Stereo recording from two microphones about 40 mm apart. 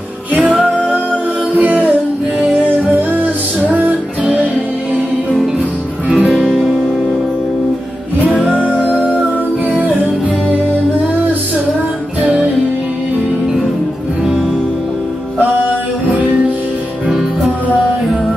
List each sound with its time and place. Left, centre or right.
0.3 s music: right
1.6 s music: right
3.7 s music: right
6.0 s music: right
6.3 s music: centre
9.7 s music: right